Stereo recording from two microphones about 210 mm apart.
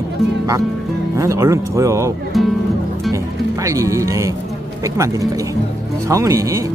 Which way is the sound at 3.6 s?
15° right (ahead or behind).